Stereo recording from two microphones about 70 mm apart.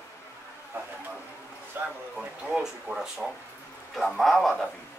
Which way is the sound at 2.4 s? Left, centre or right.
Centre.